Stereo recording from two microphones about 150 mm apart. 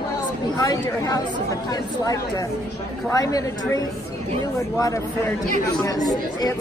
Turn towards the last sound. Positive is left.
turn(degrees=25)  # may be behind; listen again after turning